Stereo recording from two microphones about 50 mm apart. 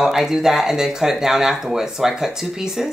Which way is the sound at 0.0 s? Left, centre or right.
Centre.